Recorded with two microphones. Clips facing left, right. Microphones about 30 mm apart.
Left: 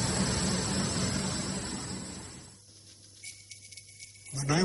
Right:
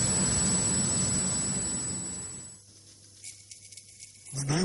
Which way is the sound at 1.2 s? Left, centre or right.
Centre.